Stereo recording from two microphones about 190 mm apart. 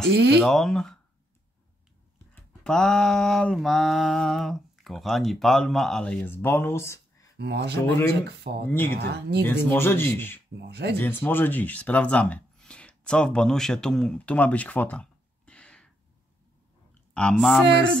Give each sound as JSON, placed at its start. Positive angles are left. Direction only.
{"t": 0.1, "sound": "speech", "side_deg": -60}
{"t": 0.4, "sound": "mantra", "side_deg": 0}
{"t": 2.6, "sound": "mantra", "side_deg": 5}
{"t": 7.3, "sound": "speech", "side_deg": -60}
{"t": 8.6, "sound": "speech", "side_deg": 10}
{"t": 8.9, "sound": "speech", "side_deg": -60}
{"t": 9.5, "sound": "speech", "side_deg": 10}
{"t": 10.5, "sound": "speech", "side_deg": -60}
{"t": 11.0, "sound": "speech", "side_deg": 10}
{"t": 17.1, "sound": "mantra", "side_deg": 5}